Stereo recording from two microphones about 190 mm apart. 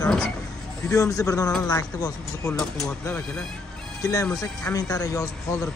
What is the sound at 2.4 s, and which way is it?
Speech, centre (ahead or behind).